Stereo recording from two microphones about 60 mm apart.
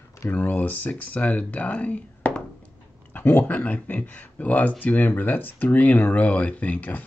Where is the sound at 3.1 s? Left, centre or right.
Left.